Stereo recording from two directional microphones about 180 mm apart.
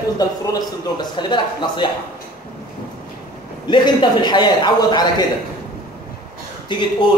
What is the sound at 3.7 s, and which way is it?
A man's voice, 25° left (ahead or behind).